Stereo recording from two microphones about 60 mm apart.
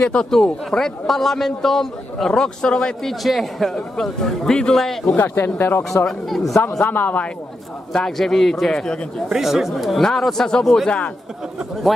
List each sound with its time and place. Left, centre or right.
0.0 s a man's voice: centre
3.0 s a man's voice: centre
5.1 s speech: left
6.0 s speech: centre
6.8 s a man's voice: left
7.9 s a man's voice: centre
9.3 s speech: centre